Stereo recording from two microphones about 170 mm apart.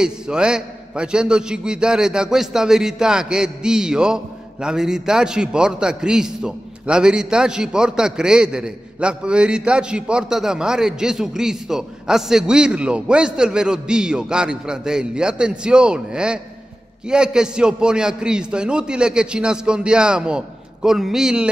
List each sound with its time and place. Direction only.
0.0 s a man's voice: 5° right (ahead or behind)